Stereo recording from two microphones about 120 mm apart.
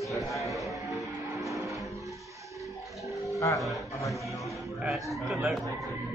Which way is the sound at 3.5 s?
Centre (ahead or behind).